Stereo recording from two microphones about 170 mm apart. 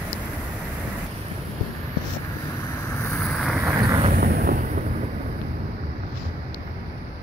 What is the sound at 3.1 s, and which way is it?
Vehicle, 5° left (ahead or behind).